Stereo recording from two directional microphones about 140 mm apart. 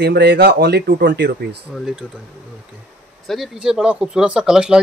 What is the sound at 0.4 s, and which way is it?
Speech, 90° right.